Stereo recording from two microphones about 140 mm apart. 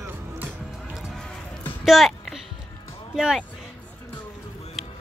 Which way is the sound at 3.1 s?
5° right (ahead or behind).